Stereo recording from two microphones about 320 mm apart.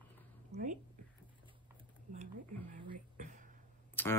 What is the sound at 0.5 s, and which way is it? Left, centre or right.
Speech, right.